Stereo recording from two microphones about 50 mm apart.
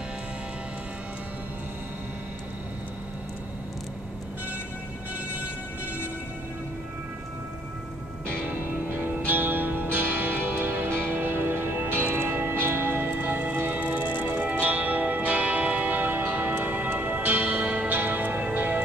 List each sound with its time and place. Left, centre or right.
8.5 s music: right